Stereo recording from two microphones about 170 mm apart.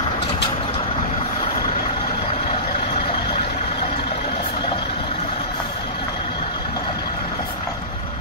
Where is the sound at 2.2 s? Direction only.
35° left (ahead or behind).